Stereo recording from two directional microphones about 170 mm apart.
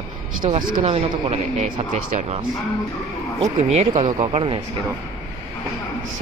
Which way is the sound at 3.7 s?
45° right (ahead or behind).